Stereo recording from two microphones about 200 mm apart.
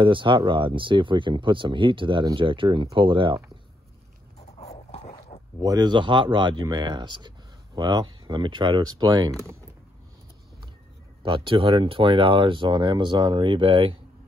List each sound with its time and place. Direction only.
0.0 s speech: 25° right (ahead or behind)
4.6 s dog: 30° left (ahead or behind)
5.6 s speech: 20° right (ahead or behind)
11.2 s speech: 25° right (ahead or behind)